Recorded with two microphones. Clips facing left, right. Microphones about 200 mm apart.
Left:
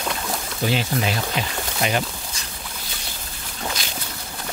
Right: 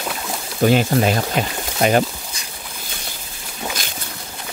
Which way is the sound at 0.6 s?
50° right (ahead or behind).